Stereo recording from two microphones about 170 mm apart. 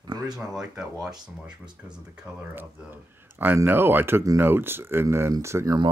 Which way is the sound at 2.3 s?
10° right (ahead or behind).